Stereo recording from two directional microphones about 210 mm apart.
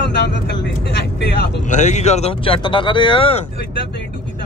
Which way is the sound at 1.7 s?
35° left (ahead or behind).